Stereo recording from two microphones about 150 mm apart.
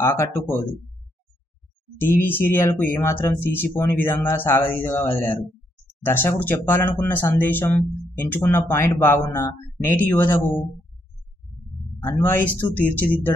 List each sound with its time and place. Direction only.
0.0 s speech: 15° left (ahead or behind)
2.0 s speech: 15° left (ahead or behind)
12.0 s speech: 20° left (ahead or behind)